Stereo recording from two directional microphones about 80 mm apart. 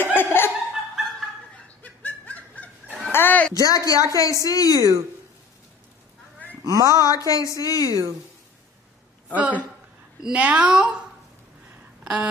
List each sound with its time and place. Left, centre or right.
0.0 s laughter: left
1.8 s snicker: centre
3.1 s a sound: left
3.5 s speech: left
4.7 s speech: right
6.6 s speech: right
6.9 s speech: left
9.3 s a woman's voice: centre
12.0 s a sound: centre